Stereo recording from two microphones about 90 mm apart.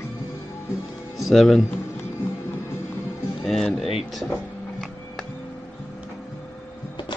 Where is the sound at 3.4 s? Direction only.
5° left (ahead or behind).